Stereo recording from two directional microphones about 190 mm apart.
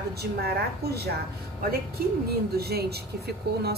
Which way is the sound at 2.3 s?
55° right (ahead or behind).